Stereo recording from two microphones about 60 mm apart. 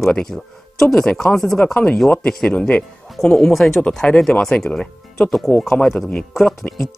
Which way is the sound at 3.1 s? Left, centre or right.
Centre.